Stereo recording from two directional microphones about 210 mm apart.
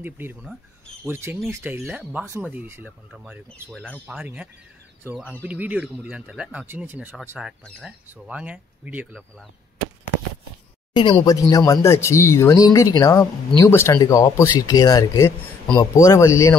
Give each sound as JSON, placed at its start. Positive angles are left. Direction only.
{"t": 0.0, "sound": "speech", "side_deg": -10}
{"t": 3.7, "sound": "speech", "side_deg": 5}
{"t": 4.2, "sound": "speech", "side_deg": -10}
{"t": 11.0, "sound": "speech", "side_deg": 20}